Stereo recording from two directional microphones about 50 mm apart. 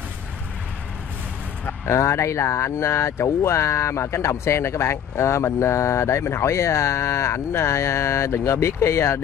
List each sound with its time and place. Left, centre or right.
1.9 s speech: left